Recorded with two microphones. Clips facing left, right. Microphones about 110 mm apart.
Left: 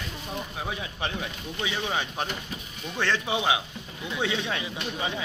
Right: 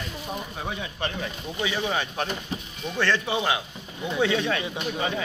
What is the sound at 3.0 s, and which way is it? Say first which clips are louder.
A man's voice: right 2 dB; 15° left (ahead or behind).